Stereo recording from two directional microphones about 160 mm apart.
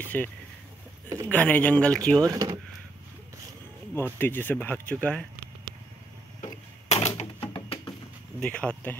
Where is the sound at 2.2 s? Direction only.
20° right (ahead or behind).